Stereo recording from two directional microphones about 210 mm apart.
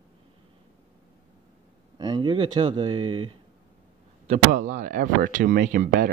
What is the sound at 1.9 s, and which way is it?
Speech, 20° right (ahead or behind).